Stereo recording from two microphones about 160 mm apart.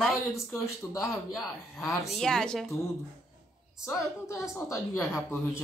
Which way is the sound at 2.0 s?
Centre (ahead or behind).